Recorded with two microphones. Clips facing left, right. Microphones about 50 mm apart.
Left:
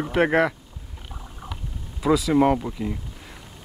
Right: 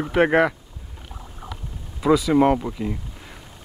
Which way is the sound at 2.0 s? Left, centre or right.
Centre.